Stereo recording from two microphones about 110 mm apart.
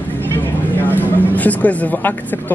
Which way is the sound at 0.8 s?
15° left (ahead or behind).